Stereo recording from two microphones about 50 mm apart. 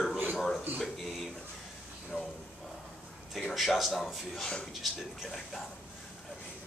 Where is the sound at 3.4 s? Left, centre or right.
Centre.